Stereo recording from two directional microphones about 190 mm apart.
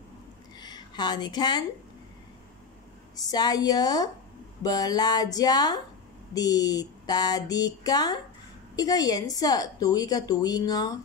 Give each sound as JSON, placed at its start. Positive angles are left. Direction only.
{"t": 0.6, "sound": "speech", "side_deg": 20}
{"t": 3.2, "sound": "a woman's voice", "side_deg": 20}